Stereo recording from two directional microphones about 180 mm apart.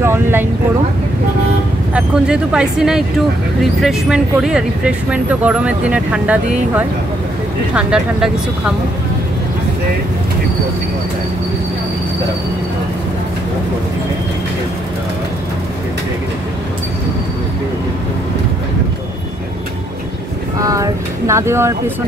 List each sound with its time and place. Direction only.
0.0 s a sound: 15° right (ahead or behind)
2.0 s speech: 5° right (ahead or behind)
20.5 s speech: 20° right (ahead or behind)